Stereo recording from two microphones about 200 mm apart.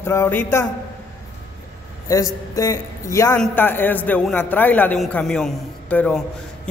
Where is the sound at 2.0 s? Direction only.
15° left (ahead or behind).